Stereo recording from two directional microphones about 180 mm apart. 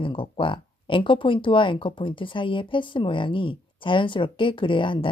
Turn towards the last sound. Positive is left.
turn(degrees=30)  # may be behind; listen again after turning